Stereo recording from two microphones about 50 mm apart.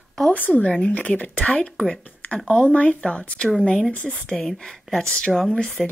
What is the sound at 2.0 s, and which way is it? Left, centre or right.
Speech, left.